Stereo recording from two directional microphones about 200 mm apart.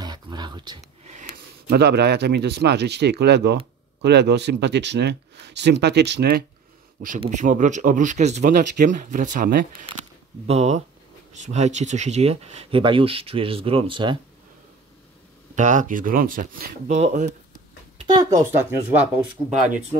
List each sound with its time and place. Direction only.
0.0 s a sound: 20° right (ahead or behind)
1.0 s a sound: 35° right (ahead or behind)
1.7 s speech: 55° right (ahead or behind)
7.2 s speech: 40° right (ahead or behind)
10.4 s speech: 35° right (ahead or behind)
15.5 s speech: 40° right (ahead or behind)
18.0 s speech: 20° right (ahead or behind)